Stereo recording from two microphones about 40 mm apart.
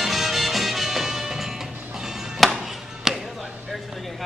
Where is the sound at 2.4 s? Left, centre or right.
Centre.